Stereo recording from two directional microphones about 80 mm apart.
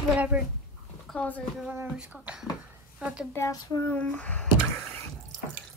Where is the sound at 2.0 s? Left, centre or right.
Centre.